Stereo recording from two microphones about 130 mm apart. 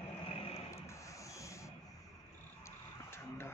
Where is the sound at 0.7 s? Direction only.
20° left (ahead or behind).